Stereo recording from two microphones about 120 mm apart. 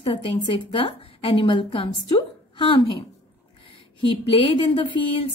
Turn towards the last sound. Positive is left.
turn(degrees=40)  # may be behind; listen again after turning